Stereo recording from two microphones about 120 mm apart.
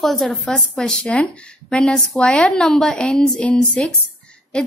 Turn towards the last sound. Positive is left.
turn(degrees=10)  # may be behind; listen again after turning